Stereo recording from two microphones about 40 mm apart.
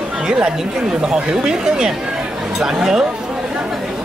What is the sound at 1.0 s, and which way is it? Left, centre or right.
Speech, centre.